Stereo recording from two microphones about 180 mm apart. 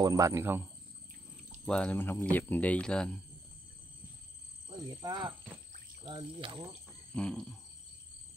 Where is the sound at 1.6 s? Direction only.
5° left (ahead or behind).